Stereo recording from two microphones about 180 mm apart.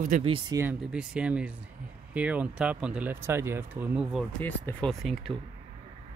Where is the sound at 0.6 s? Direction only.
10° right (ahead or behind).